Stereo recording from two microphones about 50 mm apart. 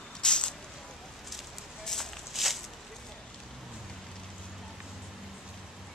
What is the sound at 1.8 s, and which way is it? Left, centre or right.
Walk, centre.